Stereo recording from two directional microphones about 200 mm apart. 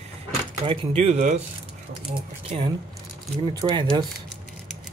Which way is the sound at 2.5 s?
35° right (ahead or behind).